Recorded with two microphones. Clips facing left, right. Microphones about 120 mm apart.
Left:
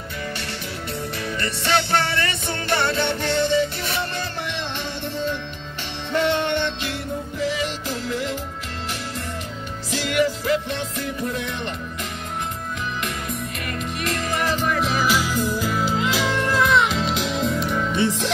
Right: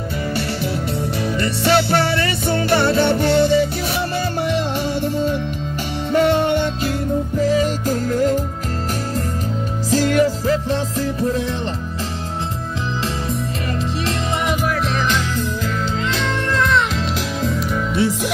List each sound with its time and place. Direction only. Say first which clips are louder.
1.7 s music: right 5 dB; 5° right (ahead or behind)
2.1 s music: right 7 dB; 35° right (ahead or behind)
6.1 s music: right 5 dB; 40° right (ahead or behind)
9.8 s music: right 6 dB; 40° right (ahead or behind)
14.5 s music: right 2 dB; 10° right (ahead or behind)
14.8 s music: right 1 dB; 5° left (ahead or behind)